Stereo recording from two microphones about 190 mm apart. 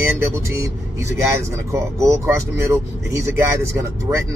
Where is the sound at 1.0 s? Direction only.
15° right (ahead or behind).